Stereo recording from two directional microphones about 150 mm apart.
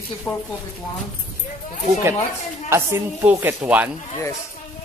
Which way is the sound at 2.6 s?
15° right (ahead or behind).